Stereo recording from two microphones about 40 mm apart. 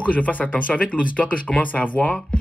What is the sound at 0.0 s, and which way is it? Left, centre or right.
Speech, left.